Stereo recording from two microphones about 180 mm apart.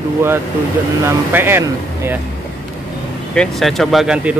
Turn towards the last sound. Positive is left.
turn(degrees=-5)  # may be behind; listen again after turning